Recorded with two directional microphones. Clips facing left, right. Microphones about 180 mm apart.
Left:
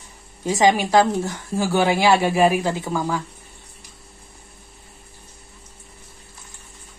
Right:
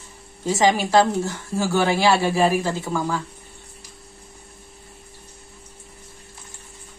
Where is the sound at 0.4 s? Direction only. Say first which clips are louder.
Left 1 dB; 15° left (ahead or behind).